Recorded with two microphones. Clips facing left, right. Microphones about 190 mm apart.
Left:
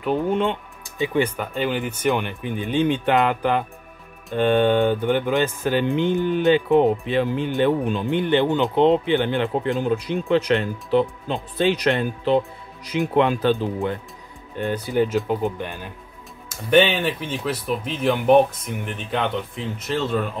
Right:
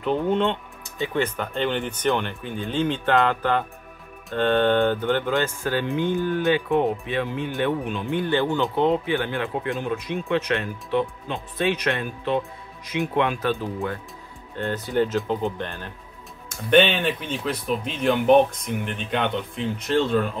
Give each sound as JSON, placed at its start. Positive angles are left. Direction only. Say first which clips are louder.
{"t": 0.0, "sound": "speech", "louder": "left 1 dB", "side_deg": 10}
{"t": 8.2, "sound": "speech", "louder": "left 3 dB", "side_deg": 20}
{"t": 14.6, "sound": "speech", "louder": "left 2 dB", "side_deg": 15}